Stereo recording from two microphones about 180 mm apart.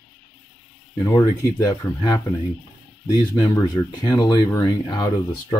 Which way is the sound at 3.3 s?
25° left (ahead or behind).